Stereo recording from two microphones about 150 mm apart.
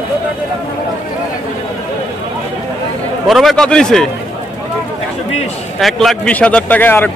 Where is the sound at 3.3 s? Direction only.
Centre (ahead or behind).